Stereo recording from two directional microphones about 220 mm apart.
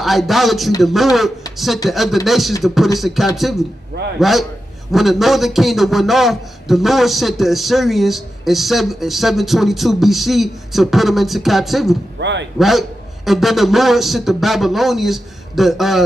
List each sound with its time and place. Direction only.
0.0 s a man's voice: centre (ahead or behind)
12.2 s a man's voice: 55° right (ahead or behind)
12.5 s a man's voice: centre (ahead or behind)